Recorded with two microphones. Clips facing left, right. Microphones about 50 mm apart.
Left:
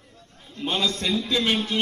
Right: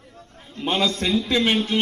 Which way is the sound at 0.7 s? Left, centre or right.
Right.